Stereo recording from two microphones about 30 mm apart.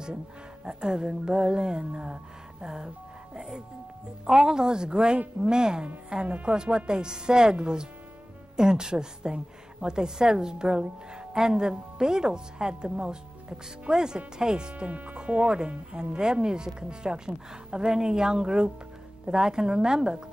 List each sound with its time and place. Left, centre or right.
0.7 s a woman's voice: right
14.9 s speech: right
15.1 s a woman's voice: right